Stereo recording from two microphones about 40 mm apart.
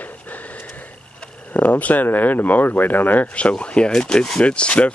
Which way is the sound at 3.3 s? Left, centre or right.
Left.